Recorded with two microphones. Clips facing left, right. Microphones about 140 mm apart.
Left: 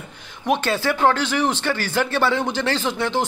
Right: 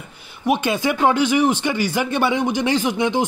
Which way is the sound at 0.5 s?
15° right (ahead or behind).